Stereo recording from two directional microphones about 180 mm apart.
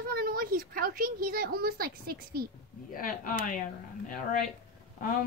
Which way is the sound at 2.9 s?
50° left (ahead or behind).